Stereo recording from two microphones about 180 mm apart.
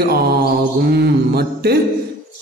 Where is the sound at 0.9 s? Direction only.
65° right (ahead or behind).